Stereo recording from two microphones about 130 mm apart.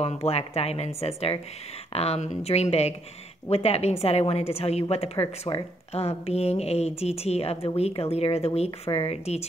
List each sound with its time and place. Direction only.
0.0 s a woman's voice: 50° left (ahead or behind)